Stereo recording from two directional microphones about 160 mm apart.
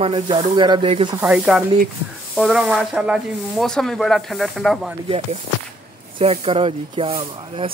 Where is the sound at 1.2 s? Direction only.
5° right (ahead or behind).